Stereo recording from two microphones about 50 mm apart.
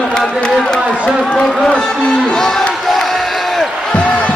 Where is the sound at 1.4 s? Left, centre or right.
Centre.